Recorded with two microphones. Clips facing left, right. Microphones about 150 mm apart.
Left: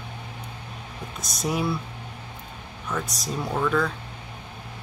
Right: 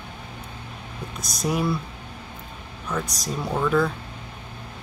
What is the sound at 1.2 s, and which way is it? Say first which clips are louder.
Speech: right 2 dB; centre (ahead or behind).